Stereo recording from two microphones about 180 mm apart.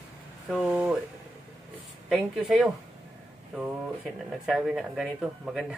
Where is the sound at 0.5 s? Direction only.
5° right (ahead or behind).